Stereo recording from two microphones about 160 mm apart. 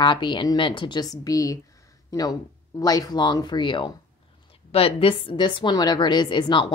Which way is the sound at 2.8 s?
25° left (ahead or behind).